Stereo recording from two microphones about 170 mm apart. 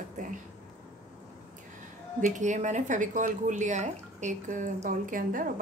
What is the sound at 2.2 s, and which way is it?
Speech, 45° right (ahead or behind).